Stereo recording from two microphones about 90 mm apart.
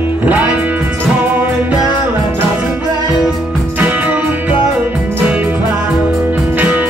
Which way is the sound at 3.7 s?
20° right (ahead or behind).